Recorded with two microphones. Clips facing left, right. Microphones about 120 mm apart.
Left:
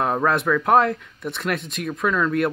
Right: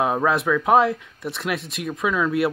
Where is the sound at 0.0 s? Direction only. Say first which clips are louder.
Even; 5° right (ahead or behind).